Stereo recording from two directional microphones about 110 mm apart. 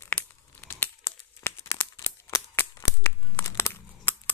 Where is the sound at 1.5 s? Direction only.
25° left (ahead or behind).